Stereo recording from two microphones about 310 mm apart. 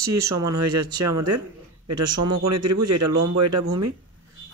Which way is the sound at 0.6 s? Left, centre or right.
Right.